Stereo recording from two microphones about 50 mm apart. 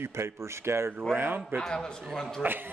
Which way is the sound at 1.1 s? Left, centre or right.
Right.